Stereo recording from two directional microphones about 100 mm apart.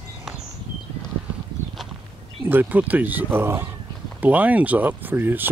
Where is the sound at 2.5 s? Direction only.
20° right (ahead or behind).